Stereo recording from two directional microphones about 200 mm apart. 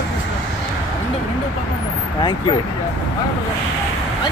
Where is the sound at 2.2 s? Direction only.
20° left (ahead or behind).